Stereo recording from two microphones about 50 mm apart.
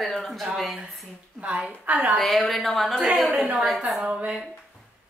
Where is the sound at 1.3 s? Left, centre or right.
Right.